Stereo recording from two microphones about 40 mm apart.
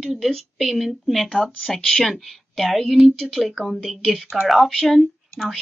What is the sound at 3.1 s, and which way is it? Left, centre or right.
Speech, centre.